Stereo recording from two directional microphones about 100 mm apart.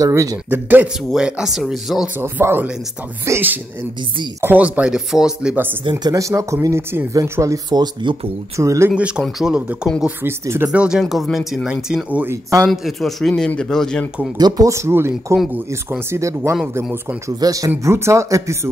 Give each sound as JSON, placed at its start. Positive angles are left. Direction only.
{"t": 0.0, "sound": "speech", "side_deg": -35}
{"t": 0.5, "sound": "speech", "side_deg": -20}
{"t": 1.1, "sound": "speech", "side_deg": -5}
{"t": 2.1, "sound": "speech", "side_deg": -20}
{"t": 6.1, "sound": "speech", "side_deg": -30}
{"t": 8.5, "sound": "speech", "side_deg": -30}
{"t": 8.9, "sound": "speech", "side_deg": -10}
{"t": 10.4, "sound": "speech", "side_deg": -25}
{"t": 10.7, "sound": "speech", "side_deg": -10}
{"t": 12.6, "sound": "speech", "side_deg": 0}
{"t": 14.4, "sound": "speech", "side_deg": -30}